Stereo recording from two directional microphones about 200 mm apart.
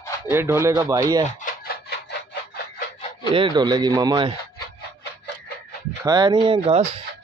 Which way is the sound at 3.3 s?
25° right (ahead or behind).